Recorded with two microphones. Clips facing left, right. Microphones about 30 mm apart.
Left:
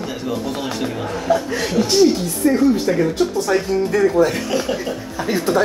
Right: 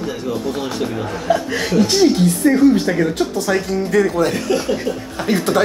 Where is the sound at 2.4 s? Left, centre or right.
Right.